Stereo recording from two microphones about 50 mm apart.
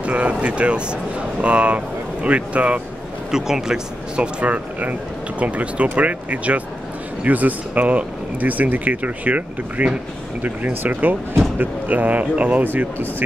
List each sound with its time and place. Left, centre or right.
0.0 s speech: right
3.3 s speech: centre
4.4 s speech: right
12.6 s speech: right